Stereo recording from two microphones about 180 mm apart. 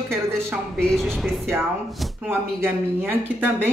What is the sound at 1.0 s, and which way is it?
Speech, centre (ahead or behind).